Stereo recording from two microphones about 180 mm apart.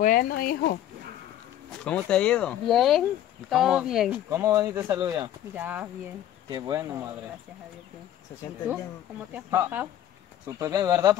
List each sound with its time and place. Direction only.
0.0 s speech: 50° left (ahead or behind)
1.9 s speech: 5° left (ahead or behind)
4.3 s speech: 15° right (ahead or behind)
6.5 s speech: 20° right (ahead or behind)
9.3 s speech: 10° right (ahead or behind)